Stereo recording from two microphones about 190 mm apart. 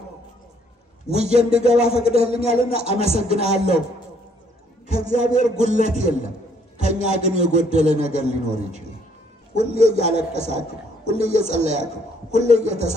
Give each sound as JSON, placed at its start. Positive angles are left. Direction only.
{"t": 1.0, "sound": "a man's voice", "side_deg": -35}
{"t": 4.8, "sound": "a man's voice", "side_deg": -40}